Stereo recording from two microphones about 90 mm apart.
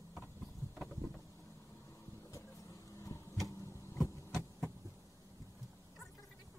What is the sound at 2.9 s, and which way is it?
Vehicle, 35° left (ahead or behind).